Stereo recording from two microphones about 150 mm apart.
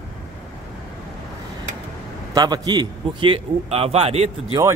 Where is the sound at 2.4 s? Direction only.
25° right (ahead or behind); by 4.3 s 40° right (ahead or behind).